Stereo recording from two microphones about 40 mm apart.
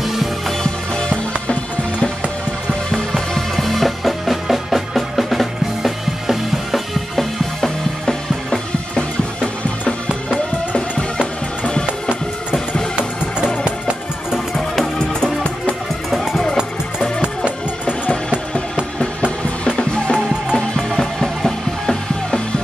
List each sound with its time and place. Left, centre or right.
0.0 s music: centre
0.9 s music: left
2.9 s music: centre
7.2 s music: centre
10.0 s music: right
13.7 s music: right
16.1 s music: centre
19.8 s music: left